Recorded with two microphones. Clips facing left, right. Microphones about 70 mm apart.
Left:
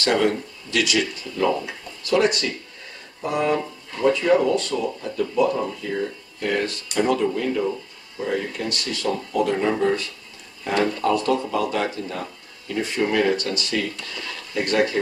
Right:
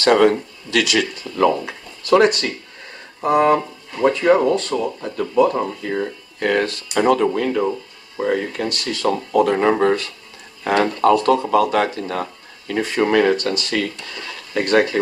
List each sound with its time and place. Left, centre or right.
0.0 s speech: right
2.0 s speech: right
6.4 s speech: right
8.2 s speech: right
13.3 s speech: right